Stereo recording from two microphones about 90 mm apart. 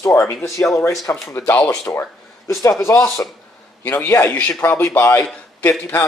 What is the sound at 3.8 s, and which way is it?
A man's voice, 20° left (ahead or behind).